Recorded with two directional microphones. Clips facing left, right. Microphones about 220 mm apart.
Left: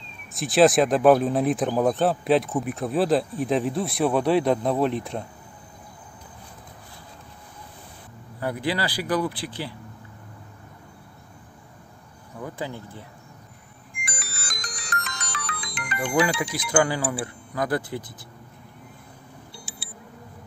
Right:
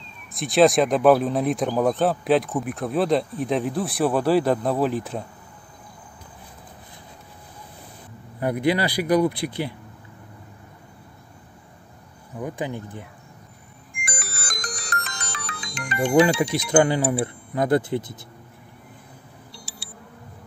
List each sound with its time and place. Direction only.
0.3 s speech: centre (ahead or behind)
8.4 s speech: 20° right (ahead or behind)
12.4 s speech: 15° right (ahead or behind)
13.9 s music: 50° right (ahead or behind)
15.0 s music: 30° right (ahead or behind)
15.4 s speech: 25° right (ahead or behind)
19.5 s clock: centre (ahead or behind)